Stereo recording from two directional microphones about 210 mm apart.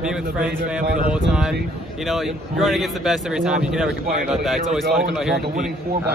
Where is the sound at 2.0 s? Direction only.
Centre (ahead or behind).